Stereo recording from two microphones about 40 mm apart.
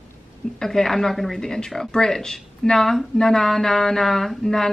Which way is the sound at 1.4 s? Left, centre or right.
Centre.